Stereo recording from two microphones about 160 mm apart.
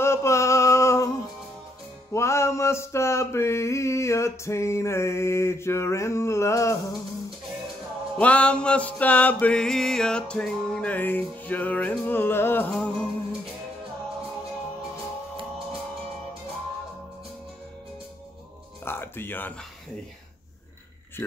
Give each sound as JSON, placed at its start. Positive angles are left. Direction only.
{"t": 0.0, "sound": "male singing", "side_deg": 15}
{"t": 2.1, "sound": "mantra", "side_deg": 15}
{"t": 8.2, "sound": "mantra", "side_deg": 10}
{"t": 18.9, "sound": "music", "side_deg": 15}